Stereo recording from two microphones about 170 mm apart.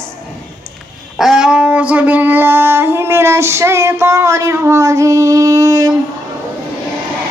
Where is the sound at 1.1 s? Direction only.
5° right (ahead or behind); by 5.9 s 20° right (ahead or behind).